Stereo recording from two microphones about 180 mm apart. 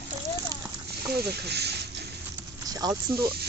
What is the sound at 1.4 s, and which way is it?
Speech, 65° right (ahead or behind).